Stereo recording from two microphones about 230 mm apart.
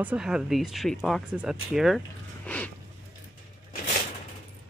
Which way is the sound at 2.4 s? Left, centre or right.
Centre.